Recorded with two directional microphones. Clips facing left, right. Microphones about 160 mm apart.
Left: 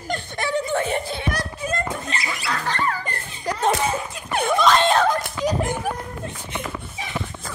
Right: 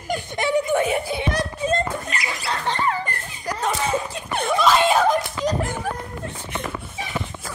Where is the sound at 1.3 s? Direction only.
25° right (ahead or behind).